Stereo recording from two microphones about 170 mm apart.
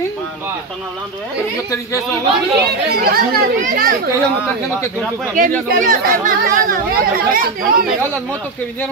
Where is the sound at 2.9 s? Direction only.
60° right (ahead or behind).